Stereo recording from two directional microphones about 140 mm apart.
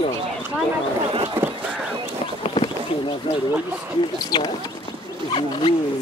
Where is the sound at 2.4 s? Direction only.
45° left (ahead or behind).